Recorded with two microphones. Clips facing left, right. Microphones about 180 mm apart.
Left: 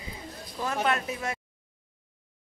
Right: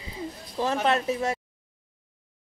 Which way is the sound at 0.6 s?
30° right (ahead or behind).